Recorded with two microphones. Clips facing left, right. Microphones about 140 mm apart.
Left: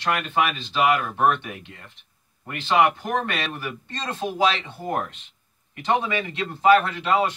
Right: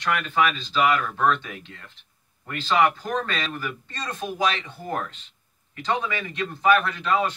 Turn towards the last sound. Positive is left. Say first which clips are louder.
# left 2 dB
turn(degrees=25)  # may be behind; listen again after turning